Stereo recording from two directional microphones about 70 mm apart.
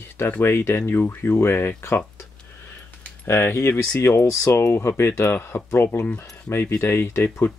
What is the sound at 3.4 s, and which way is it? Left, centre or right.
Speech, left.